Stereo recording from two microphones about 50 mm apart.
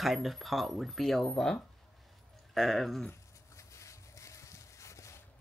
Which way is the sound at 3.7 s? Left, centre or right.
Left.